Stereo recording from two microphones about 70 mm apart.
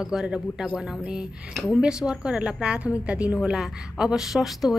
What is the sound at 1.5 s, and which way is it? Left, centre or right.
A woman's voice, centre.